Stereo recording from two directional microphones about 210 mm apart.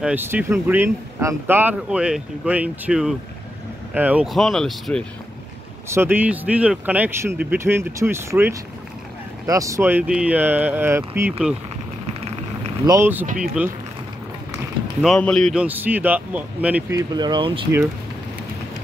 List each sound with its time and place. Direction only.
0.0 s speech: 10° right (ahead or behind)
5.9 s speech: 10° right (ahead or behind)
12.8 s speech: 15° right (ahead or behind)
15.0 s speech: centre (ahead or behind)
17.1 s speech: 20° right (ahead or behind)